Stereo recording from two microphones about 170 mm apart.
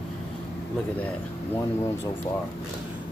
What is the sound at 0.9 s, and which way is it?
Speech, 10° left (ahead or behind).